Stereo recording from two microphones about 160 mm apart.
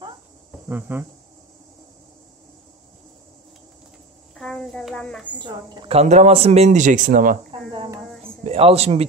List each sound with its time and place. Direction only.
0.7 s speech: 15° right (ahead or behind)
4.4 s a sound: 5° left (ahead or behind)
5.4 s a woman's voice: 30° right (ahead or behind)
5.9 s a man's voice: 45° right (ahead or behind)
8.5 s speech: 40° right (ahead or behind)